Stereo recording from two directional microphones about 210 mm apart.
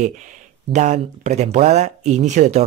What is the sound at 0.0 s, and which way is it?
Speech, 35° right (ahead or behind).